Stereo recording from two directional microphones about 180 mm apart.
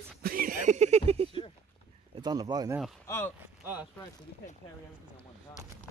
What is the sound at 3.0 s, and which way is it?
Speech, 15° left (ahead or behind).